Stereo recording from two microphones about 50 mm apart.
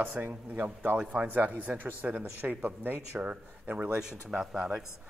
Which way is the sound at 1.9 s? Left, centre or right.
Right.